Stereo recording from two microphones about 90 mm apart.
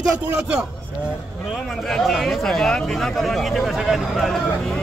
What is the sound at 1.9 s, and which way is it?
Speech, centre (ahead or behind).